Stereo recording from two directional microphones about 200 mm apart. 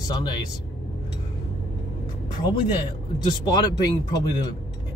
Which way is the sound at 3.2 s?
20° left (ahead or behind).